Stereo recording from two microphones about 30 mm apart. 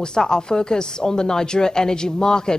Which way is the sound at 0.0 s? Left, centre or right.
Left.